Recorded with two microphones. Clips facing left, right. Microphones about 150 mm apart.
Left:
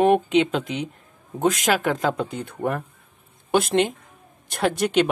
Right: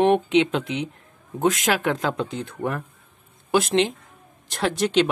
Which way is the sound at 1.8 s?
45° left (ahead or behind).